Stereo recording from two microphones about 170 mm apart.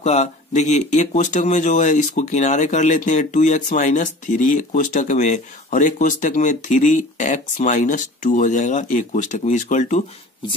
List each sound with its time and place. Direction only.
0.0 s speech: 40° left (ahead or behind)